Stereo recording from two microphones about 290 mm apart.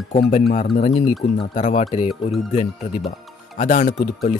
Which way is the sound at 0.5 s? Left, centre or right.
Left.